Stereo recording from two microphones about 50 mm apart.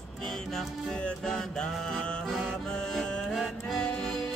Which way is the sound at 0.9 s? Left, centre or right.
Centre.